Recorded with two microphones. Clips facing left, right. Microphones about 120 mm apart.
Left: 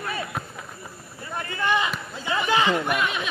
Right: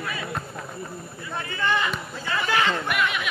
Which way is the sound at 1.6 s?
15° left (ahead or behind).